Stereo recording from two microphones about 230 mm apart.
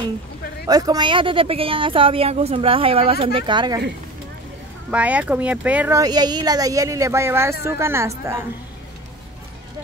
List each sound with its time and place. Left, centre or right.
0.7 s speech: centre
4.9 s speech: centre